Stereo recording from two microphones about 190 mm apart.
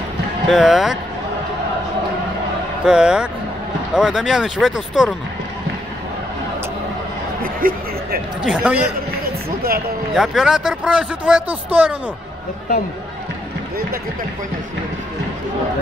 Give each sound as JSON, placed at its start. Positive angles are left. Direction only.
{"t": 0.5, "sound": "speech", "side_deg": 0}
{"t": 2.8, "sound": "speech", "side_deg": -5}
{"t": 7.6, "sound": "speech", "side_deg": -50}
{"t": 8.5, "sound": "speech", "side_deg": -5}
{"t": 10.1, "sound": "speech", "side_deg": 0}